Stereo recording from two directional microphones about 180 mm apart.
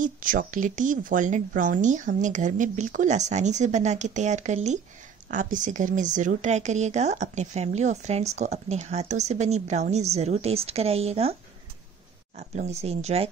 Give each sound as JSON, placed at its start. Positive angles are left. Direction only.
{"t": 0.0, "sound": "speech", "side_deg": -50}
{"t": 12.4, "sound": "speech", "side_deg": -40}